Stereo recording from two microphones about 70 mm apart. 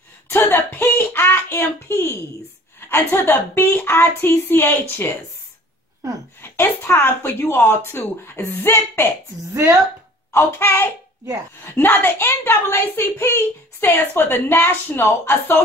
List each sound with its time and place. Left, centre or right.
0.3 s a sound: left
2.8 s a woman's voice: left
6.4 s a woman's voice: left
9.5 s speech: right
10.3 s a woman's voice: left